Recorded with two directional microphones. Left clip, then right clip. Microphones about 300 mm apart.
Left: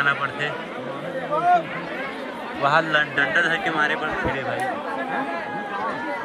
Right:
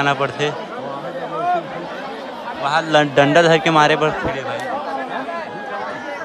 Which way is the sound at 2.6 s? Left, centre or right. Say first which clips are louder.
Right 3 dB; centre.